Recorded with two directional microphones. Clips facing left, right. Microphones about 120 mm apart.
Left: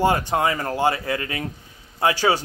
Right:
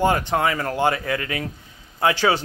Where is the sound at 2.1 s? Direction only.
40° left (ahead or behind).